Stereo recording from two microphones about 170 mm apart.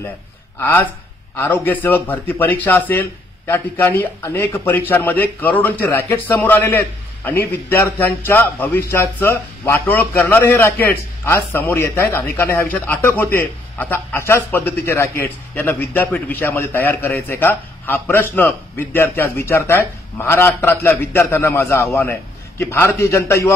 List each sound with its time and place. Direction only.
0.6 s a man's voice: 10° left (ahead or behind)